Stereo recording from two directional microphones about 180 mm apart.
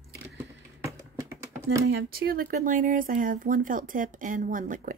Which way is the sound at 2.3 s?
50° right (ahead or behind).